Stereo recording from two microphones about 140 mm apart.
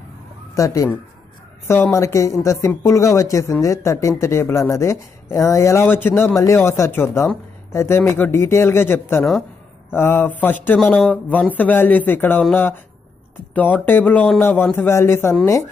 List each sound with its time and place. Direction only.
0.6 s speech: 25° left (ahead or behind)
13.8 s speech: 15° left (ahead or behind)